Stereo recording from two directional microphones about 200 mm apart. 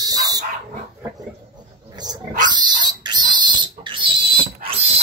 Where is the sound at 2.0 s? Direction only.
20° right (ahead or behind).